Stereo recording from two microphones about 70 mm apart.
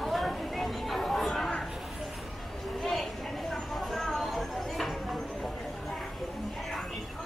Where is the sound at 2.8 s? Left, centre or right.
Centre.